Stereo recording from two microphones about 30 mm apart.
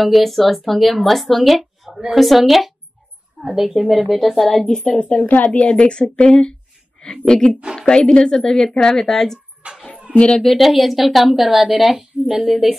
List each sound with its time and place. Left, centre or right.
0.0 s a woman's voice: centre
4.4 s speech: centre
4.6 s a woman's voice: left
4.9 s a woman's voice: left
5.6 s a woman's voice: left
6.2 s a woman's voice: left
9.6 s a sound: right
10.1 s a sound: right
10.4 s a woman's voice: centre
11.9 s a woman's voice: centre
12.4 s speech: centre